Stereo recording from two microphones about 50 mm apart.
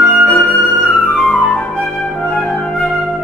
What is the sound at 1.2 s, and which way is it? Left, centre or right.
Flute, left.